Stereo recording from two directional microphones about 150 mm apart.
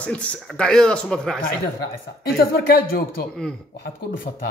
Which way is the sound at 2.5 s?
80° left.